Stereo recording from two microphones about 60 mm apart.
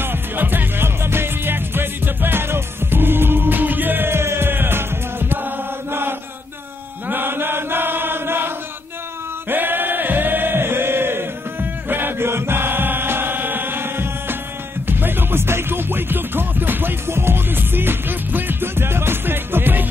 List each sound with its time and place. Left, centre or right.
0.0 s music: right
7.1 s chant: right
14.9 s music: right